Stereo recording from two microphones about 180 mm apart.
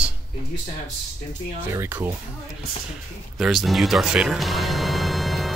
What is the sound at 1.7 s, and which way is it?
Speech, 10° right (ahead or behind).